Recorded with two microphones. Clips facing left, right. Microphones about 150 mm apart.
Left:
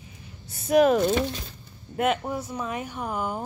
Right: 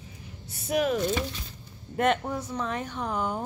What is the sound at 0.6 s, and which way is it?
Speech, 45° left (ahead or behind).